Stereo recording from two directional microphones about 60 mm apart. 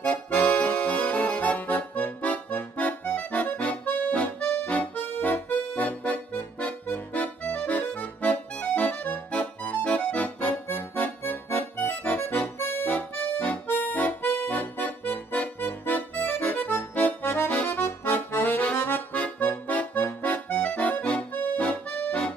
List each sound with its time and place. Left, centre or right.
0.0 s accordion: left
12.5 s accordion: left
12.9 s accordion: left
17.5 s accordion: left
19.1 s accordion: left